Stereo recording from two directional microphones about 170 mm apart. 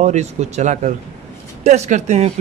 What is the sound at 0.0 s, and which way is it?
Speech, 40° right (ahead or behind).